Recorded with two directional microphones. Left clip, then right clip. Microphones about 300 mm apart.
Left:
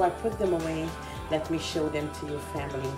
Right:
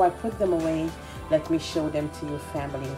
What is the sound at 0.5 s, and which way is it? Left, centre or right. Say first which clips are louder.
A woman's voice: right 4 dB; centre.